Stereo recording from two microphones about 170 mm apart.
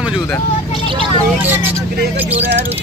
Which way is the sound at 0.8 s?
30° right (ahead or behind).